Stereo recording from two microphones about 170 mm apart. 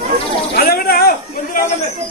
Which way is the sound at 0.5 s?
65° left (ahead or behind).